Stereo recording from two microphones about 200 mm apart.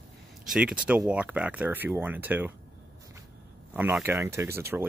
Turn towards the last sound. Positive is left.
turn(degrees=-10)  # may be behind; listen again after turning